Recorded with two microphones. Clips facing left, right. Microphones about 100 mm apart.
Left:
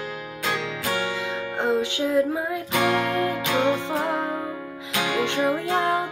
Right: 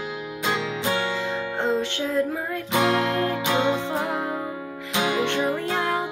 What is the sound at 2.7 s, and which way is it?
Music, 25° right (ahead or behind).